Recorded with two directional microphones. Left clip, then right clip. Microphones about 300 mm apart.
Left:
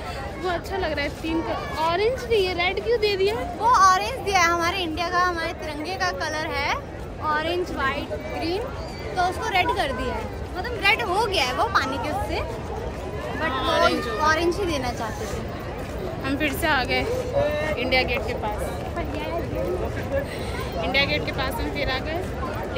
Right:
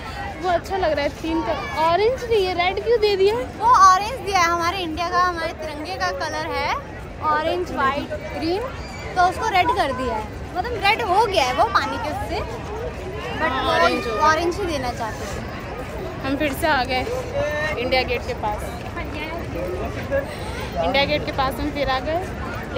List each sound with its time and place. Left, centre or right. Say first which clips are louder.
0.4 s a woman's voice: right 6 dB; centre
8.4 s speech: right 4 dB; centre
10.6 s speech: right 2 dB; centre
16.3 s speech: right 3 dB; centre
20.9 s speech: right 1 dB; centre